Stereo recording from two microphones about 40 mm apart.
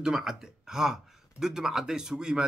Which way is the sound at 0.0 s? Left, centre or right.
Centre.